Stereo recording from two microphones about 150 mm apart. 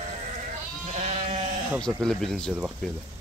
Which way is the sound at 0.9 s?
50° right (ahead or behind).